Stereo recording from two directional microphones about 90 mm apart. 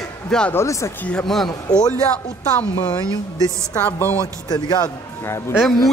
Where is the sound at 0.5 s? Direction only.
30° left (ahead or behind).